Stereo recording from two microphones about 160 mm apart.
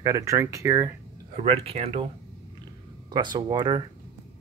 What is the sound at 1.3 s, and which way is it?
Speech, 40° right (ahead or behind).